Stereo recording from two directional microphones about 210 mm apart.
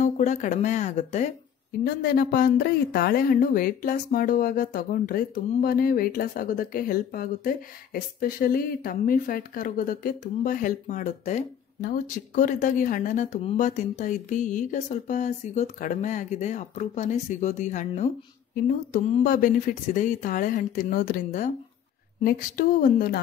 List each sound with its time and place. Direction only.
0.0 s speech: 35° left (ahead or behind)
2.0 s a woman's voice: 45° left (ahead or behind)